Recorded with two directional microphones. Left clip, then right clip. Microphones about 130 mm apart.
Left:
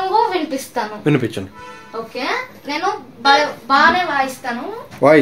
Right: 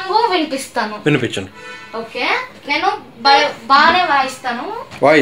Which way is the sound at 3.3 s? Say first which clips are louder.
Right 2 dB; 10° left (ahead or behind).